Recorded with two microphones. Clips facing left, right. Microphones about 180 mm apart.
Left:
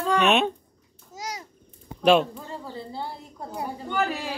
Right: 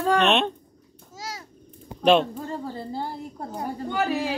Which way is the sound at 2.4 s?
45° right (ahead or behind).